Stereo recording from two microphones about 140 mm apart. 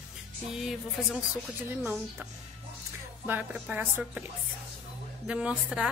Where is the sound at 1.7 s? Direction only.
15° right (ahead or behind).